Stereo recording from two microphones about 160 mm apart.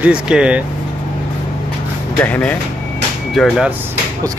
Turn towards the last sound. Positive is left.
turn(degrees=0)  # may be behind; listen again after turning